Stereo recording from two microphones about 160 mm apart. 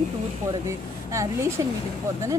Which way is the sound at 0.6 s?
20° right (ahead or behind).